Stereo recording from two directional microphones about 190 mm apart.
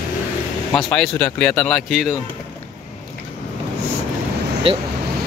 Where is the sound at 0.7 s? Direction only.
5° left (ahead or behind).